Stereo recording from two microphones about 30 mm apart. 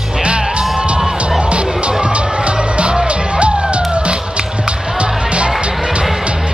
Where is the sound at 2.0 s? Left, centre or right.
Right.